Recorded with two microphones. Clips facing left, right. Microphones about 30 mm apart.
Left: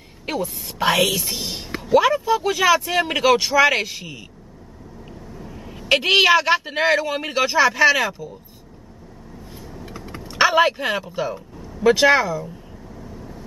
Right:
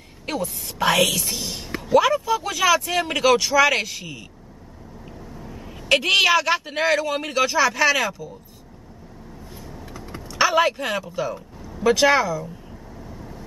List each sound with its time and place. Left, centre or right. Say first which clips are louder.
0.3 s a woman's voice: left 1 dB; centre
5.3 s vehicle: left 2 dB; centre
5.9 s a woman's voice: left 2 dB; centre
10.3 s a woman's voice: left 2 dB; centre
13.0 s vehicle: left 1 dB; centre